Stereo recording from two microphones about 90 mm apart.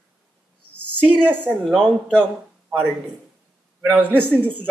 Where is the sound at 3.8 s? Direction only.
20° right (ahead or behind).